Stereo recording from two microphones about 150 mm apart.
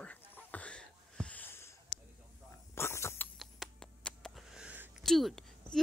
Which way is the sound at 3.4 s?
Centre (ahead or behind).